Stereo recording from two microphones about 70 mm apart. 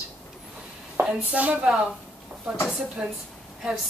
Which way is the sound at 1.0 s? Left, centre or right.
Centre.